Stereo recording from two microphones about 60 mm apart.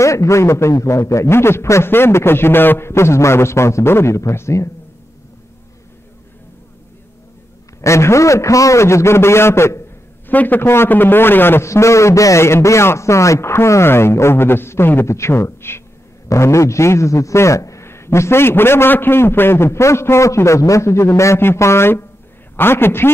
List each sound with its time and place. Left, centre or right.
0.0 s a man's voice: left
7.8 s a man's voice: left
10.2 s a man's voice: left
10.6 s a man's voice: left
11.7 s a man's voice: left
15.0 s a man's voice: left
16.3 s a man's voice: left
17.8 s a man's voice: left